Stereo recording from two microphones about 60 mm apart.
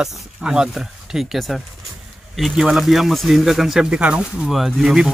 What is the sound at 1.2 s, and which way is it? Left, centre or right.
Speech, centre.